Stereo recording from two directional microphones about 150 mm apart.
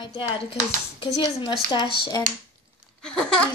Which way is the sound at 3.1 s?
5° left (ahead or behind).